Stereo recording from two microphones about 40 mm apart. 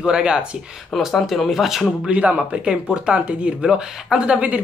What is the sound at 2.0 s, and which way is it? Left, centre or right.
Speech, right.